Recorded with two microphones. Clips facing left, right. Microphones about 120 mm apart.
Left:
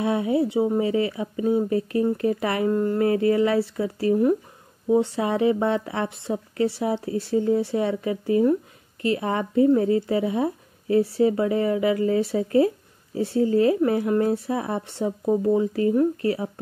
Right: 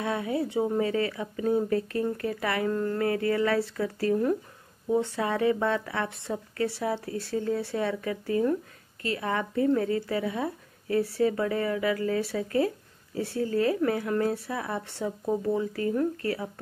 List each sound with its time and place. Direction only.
0.0 s speech: 20° left (ahead or behind)